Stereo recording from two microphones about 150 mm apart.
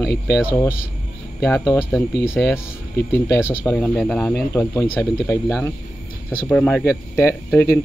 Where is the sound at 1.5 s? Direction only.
15° left (ahead or behind).